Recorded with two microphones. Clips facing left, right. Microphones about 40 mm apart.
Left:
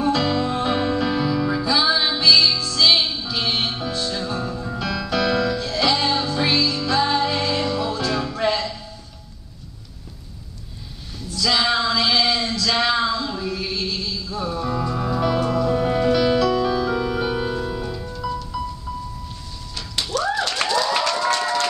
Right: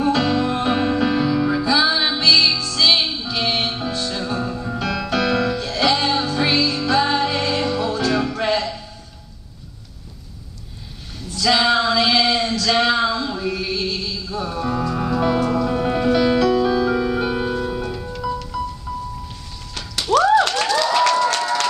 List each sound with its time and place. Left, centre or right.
0.1 s music: right
11.3 s male singing: centre
15.0 s music: centre
16.6 s keyboard: centre
18.5 s music: centre
20.1 s a sound: right
21.3 s a sound: centre